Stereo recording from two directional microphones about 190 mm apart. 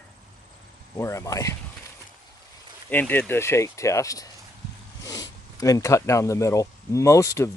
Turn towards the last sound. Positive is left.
turn(degrees=15)  # may be behind; listen again after turning